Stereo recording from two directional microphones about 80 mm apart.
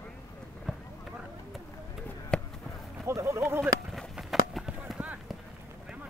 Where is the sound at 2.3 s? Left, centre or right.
Centre.